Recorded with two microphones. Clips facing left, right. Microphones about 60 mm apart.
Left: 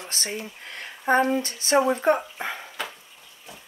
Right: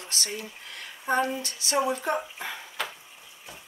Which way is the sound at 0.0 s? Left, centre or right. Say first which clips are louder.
Left 3 dB; left.